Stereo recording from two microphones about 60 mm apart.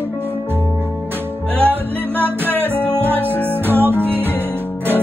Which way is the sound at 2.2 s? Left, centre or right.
Right.